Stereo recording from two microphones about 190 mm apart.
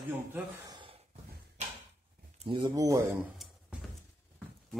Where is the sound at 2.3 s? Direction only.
25° right (ahead or behind).